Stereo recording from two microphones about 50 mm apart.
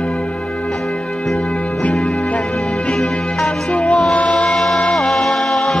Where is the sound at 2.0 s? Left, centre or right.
Left.